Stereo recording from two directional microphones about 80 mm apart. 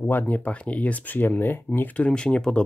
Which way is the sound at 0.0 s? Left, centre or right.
Left.